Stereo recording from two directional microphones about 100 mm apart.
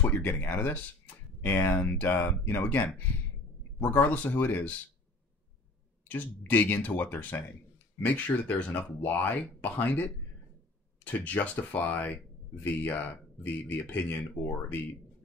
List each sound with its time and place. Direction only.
0.0 s speech: 20° left (ahead or behind)
6.0 s speech: 15° left (ahead or behind)